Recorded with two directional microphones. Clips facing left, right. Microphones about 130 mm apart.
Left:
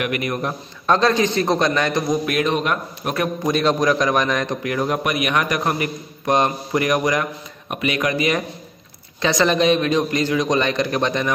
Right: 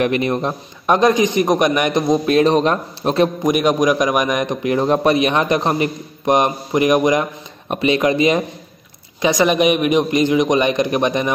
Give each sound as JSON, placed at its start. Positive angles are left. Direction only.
{"t": 0.0, "sound": "a man's voice", "side_deg": -25}
{"t": 3.4, "sound": "a man's voice", "side_deg": -15}